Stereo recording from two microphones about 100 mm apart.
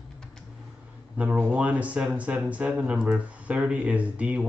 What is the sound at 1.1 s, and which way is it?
Speech, 15° right (ahead or behind).